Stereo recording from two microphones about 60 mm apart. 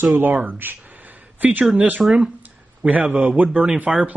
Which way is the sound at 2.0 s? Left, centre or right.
Centre.